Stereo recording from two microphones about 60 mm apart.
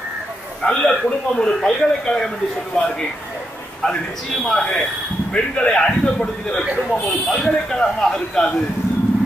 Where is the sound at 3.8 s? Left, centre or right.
Centre.